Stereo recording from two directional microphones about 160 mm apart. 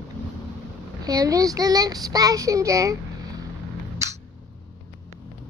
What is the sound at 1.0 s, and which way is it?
Child singing, 20° right (ahead or behind).